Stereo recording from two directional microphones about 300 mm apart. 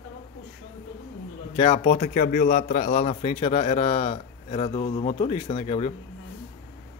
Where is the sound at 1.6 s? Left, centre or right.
Left.